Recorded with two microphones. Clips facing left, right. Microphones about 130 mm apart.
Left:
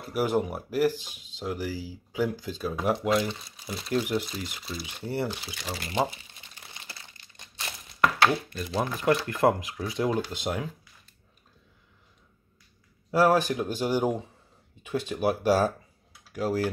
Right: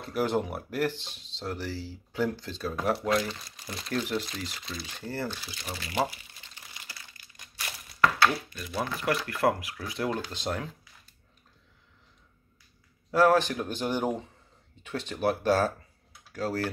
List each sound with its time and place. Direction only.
0.0 s speech: 10° left (ahead or behind)
3.1 s speech: centre (ahead or behind)
4.8 s speech: 20° left (ahead or behind)
5.9 s crumpling: 25° left (ahead or behind)
8.5 s speech: 20° left (ahead or behind)
13.1 s speech: 10° left (ahead or behind)